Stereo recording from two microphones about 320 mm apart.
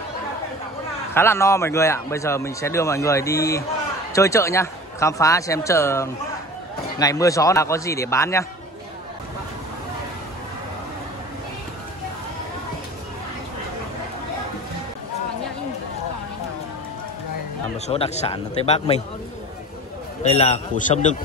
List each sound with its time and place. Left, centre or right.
1.1 s a man's voice: centre
17.7 s speech: centre
20.2 s speech: centre